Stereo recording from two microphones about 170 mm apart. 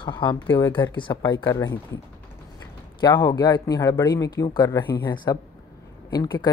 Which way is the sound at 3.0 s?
25° left (ahead or behind).